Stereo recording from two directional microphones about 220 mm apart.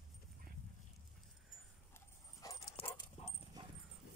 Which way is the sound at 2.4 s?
20° left (ahead or behind).